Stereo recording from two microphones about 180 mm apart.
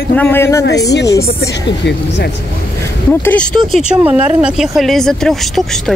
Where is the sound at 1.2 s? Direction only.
65° left (ahead or behind).